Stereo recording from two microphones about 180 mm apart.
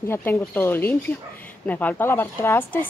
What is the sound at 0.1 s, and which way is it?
A woman's voice, 10° left (ahead or behind).